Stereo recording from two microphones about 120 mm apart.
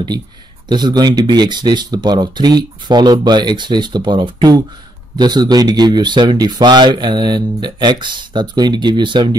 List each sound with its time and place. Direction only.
0.7 s speech: 35° right (ahead or behind)